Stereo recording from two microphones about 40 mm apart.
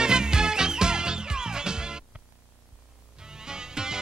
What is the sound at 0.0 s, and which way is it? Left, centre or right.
Music, centre.